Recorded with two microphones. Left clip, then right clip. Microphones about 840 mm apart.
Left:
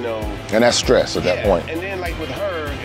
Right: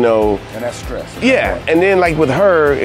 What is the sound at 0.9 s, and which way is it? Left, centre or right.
Speech, left.